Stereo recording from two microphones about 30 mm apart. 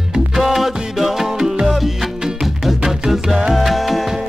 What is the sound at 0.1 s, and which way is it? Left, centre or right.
Music, centre.